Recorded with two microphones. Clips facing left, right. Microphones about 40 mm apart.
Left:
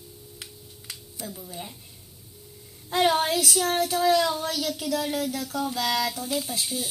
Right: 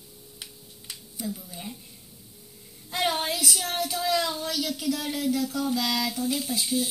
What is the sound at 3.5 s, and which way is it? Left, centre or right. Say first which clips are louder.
Speech: left 5 dB; centre.